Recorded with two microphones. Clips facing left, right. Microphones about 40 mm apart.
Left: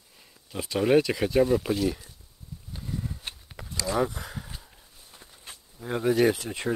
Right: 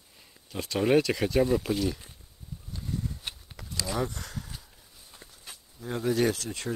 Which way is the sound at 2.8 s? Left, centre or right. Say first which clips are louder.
Even; centre.